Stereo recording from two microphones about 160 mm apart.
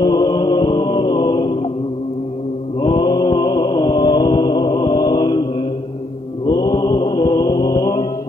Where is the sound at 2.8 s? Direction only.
25° left (ahead or behind).